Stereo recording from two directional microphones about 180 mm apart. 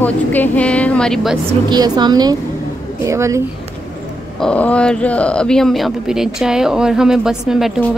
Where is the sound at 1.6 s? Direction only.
20° right (ahead or behind).